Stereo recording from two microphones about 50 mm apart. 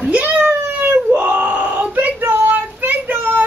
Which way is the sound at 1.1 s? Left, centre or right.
Right.